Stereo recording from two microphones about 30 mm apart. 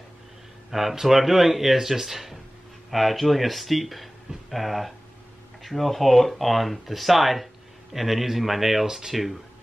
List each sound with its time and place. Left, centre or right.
0.7 s speech: centre
8.8 s speech: centre
9.1 s speech: centre